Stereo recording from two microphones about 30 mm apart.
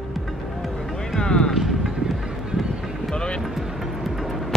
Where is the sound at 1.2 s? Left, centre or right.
Left.